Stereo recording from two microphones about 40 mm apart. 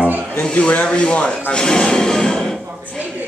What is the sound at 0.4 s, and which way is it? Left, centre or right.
A man's voice, left.